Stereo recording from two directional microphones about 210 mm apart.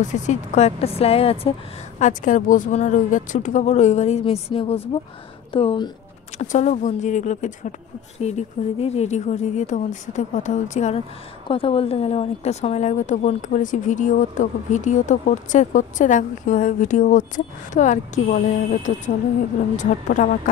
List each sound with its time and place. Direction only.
0.0 s a woman's voice: 35° left (ahead or behind)